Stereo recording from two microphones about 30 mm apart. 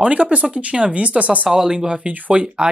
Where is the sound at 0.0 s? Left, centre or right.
Right.